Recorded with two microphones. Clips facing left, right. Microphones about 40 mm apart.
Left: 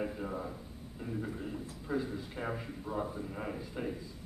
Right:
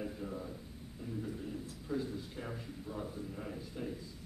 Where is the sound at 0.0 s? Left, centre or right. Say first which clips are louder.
Left 4 dB; left.